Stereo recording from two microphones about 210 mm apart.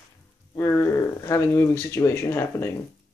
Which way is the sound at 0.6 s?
15° left (ahead or behind).